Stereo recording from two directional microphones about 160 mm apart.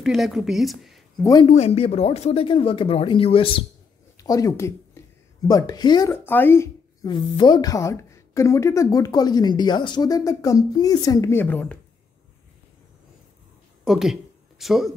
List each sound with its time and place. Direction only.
0.0 s speech: centre (ahead or behind)
1.4 s speech: 40° left (ahead or behind)
4.2 s a woman's voice: 20° left (ahead or behind)
6.1 s a woman's voice: 10° left (ahead or behind)
13.8 s speech: centre (ahead or behind)